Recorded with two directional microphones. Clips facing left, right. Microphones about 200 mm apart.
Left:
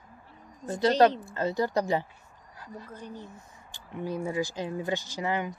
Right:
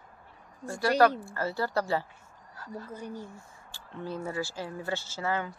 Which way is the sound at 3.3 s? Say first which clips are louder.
Even; 20° left (ahead or behind).